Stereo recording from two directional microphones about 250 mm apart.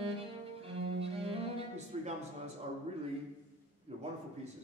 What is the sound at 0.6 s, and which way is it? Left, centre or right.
Cello, right.